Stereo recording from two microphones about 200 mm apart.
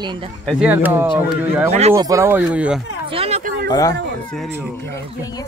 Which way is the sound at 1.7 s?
35° right (ahead or behind).